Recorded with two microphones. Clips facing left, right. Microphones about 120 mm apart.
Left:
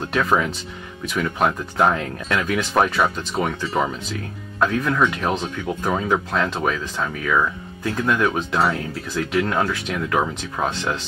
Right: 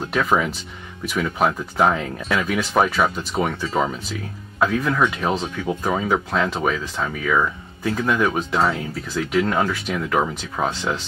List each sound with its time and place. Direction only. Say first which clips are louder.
0.0 s speech: even; centre (ahead or behind)